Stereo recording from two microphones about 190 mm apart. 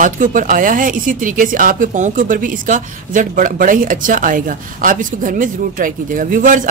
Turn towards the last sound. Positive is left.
turn(degrees=-45)  # may be behind; listen again after turning